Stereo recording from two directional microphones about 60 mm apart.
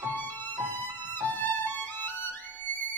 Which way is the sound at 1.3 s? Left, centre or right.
Left.